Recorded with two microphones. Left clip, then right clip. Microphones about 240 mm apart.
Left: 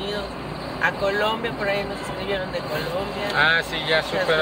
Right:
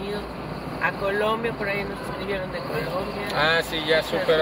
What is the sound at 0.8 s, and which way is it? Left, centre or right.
Speech, left.